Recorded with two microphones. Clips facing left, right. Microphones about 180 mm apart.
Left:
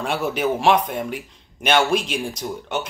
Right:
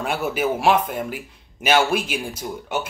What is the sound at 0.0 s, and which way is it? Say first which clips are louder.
A man's voice: left 1 dB; 5° right (ahead or behind).